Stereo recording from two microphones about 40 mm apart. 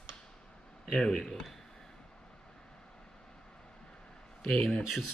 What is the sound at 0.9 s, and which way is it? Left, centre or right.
Speech, centre.